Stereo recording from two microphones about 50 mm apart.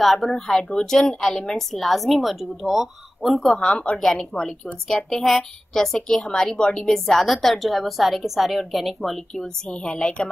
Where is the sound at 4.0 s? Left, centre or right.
Centre.